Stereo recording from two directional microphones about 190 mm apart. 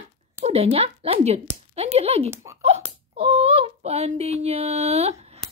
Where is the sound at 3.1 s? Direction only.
30° right (ahead or behind).